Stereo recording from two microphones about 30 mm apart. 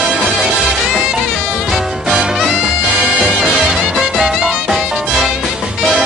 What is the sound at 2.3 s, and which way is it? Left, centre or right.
Swing music, centre.